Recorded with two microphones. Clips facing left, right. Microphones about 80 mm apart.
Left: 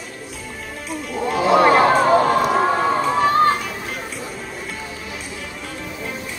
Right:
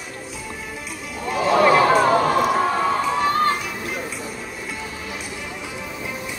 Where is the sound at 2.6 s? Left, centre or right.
Centre.